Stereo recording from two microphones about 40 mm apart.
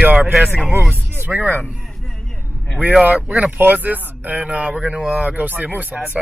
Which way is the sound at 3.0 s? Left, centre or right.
Right.